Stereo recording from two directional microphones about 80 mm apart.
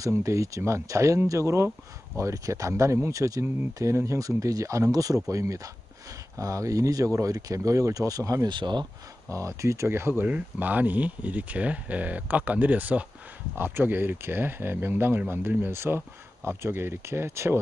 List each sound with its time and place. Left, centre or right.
0.1 s speech: right
8.5 s speech: right
9.3 s speech: right
10.2 s speech: right